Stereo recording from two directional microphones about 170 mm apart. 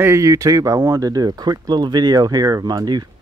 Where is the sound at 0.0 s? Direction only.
15° right (ahead or behind).